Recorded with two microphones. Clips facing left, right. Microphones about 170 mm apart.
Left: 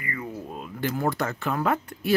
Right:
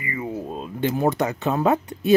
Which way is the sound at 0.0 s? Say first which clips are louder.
Right 5 dB; 20° right (ahead or behind).